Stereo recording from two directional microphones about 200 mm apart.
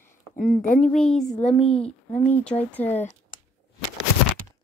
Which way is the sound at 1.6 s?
30° left (ahead or behind).